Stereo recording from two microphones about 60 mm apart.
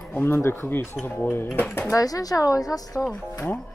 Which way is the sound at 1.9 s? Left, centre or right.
Left.